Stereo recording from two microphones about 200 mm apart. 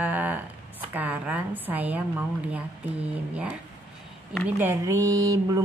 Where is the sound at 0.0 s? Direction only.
10° right (ahead or behind).